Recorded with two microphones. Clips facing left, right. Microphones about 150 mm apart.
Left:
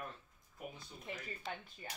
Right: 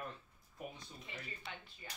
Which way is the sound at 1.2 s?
45° left (ahead or behind).